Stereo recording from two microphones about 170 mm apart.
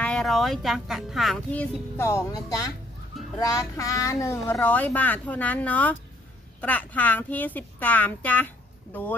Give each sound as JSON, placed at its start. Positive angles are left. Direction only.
{"t": 0.0, "sound": "speech", "side_deg": 5}